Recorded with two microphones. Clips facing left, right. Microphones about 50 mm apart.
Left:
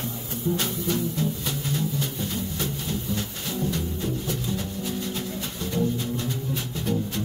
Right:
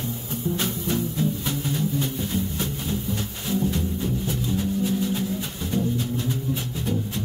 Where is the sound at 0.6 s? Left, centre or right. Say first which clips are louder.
Right 1 dB; centre.